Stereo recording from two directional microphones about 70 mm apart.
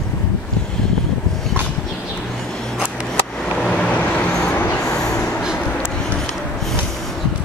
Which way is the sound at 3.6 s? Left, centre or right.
Centre.